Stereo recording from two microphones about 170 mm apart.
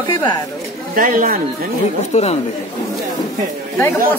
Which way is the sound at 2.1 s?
40° left (ahead or behind).